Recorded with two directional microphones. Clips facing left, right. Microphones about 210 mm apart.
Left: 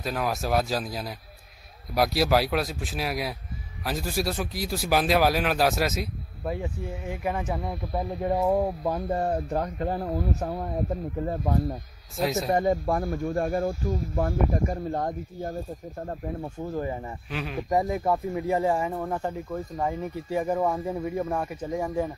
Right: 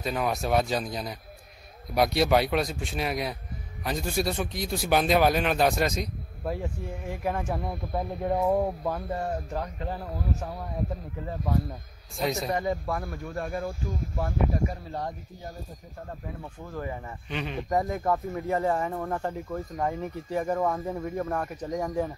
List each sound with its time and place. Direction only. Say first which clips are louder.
0.0 s speech: even; centre (ahead or behind)
9.1 s speech: left 5 dB; 35° left (ahead or behind)
12.2 s speech: left 2 dB; centre (ahead or behind)
12.4 s speech: left 8 dB; 45° left (ahead or behind)
12.8 s speech: left 6 dB; 30° left (ahead or behind)
13.7 s speech: left 5 dB; 50° left (ahead or behind)
16.5 s speech: left 3 dB; 25° left (ahead or behind)
17.3 s speech: even; 5° left (ahead or behind)
17.6 s speech: left 2 dB; 15° left (ahead or behind)